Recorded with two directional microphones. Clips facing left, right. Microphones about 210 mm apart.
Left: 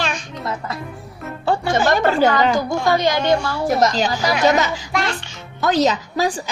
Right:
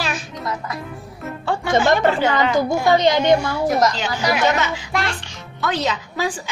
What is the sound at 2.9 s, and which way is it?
Speech, 20° right (ahead or behind).